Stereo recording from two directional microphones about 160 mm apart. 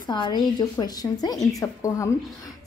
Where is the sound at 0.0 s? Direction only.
25° left (ahead or behind).